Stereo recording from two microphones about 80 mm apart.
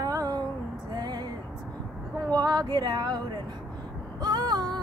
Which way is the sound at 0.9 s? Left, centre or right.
Right.